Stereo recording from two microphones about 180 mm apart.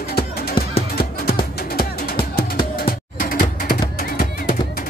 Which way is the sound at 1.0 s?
60° left (ahead or behind).